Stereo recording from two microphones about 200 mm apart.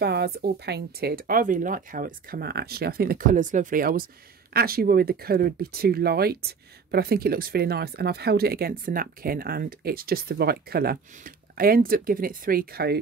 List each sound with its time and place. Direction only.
0.0 s speech: 55° right (ahead or behind)